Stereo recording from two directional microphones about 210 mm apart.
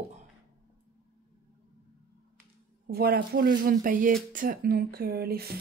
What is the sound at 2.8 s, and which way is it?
A woman's voice, 45° right (ahead or behind).